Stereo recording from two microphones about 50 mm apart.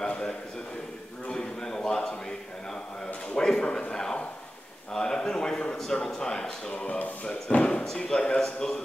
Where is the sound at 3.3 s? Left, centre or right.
Centre.